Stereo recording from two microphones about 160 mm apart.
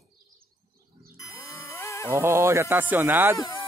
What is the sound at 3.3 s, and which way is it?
Speech, 20° left (ahead or behind).